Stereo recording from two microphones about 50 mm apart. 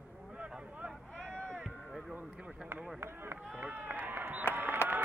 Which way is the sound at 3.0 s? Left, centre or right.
Right.